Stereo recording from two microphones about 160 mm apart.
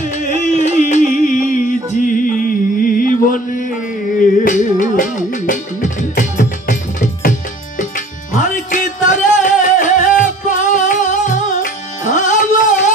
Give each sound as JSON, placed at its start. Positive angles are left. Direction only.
{"t": 0.5, "sound": "music", "side_deg": 45}